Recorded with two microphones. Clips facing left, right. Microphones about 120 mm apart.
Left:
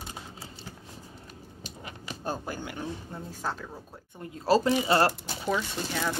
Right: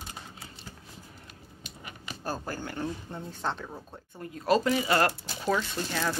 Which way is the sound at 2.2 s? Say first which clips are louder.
Even; 15° left (ahead or behind).